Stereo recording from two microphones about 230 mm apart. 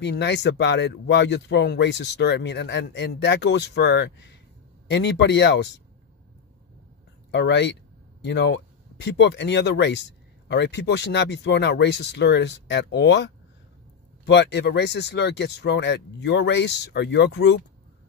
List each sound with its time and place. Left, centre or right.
0.0 s speech: left
7.2 s speech: left